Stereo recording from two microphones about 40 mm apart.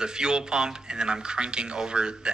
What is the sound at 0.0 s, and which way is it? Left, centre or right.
Speech, centre.